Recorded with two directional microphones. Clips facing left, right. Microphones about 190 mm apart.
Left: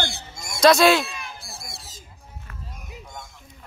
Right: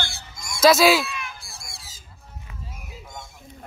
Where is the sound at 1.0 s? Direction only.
35° left (ahead or behind).